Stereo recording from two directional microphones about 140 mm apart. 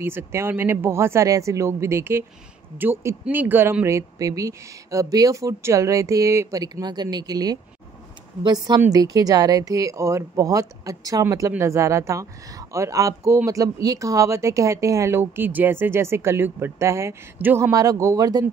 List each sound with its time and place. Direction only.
0.0 s speech: 20° right (ahead or behind)